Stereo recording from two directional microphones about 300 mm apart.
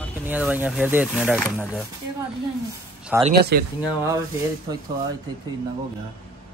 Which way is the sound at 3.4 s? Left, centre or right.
Right.